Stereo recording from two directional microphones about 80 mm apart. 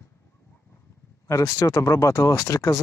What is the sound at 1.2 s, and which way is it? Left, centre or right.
Speech, left.